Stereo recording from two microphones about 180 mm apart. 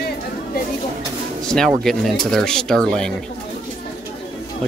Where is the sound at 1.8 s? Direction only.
Centre (ahead or behind).